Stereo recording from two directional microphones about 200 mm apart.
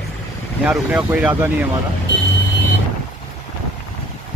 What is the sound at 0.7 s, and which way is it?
Speech, 5° right (ahead or behind).